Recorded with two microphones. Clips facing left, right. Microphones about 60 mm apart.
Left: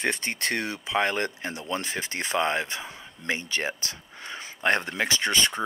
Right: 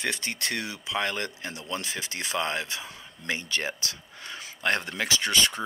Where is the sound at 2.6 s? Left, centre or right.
Left.